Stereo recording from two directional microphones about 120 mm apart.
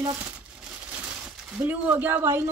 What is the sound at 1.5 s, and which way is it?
Speech, 15° right (ahead or behind).